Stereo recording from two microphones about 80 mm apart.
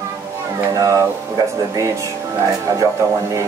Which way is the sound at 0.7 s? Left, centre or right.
Right.